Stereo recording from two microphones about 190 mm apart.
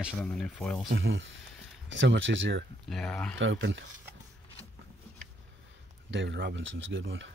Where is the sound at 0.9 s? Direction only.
80° right.